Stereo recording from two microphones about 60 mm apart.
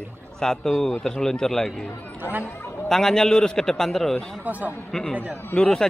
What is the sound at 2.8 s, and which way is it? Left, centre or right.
A man's voice, centre.